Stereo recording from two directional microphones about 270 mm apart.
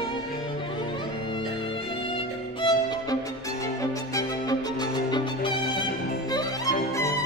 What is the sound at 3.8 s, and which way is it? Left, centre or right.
Music, centre.